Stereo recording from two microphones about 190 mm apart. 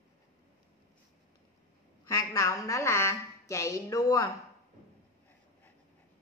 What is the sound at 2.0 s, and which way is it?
A woman's voice, 15° left (ahead or behind).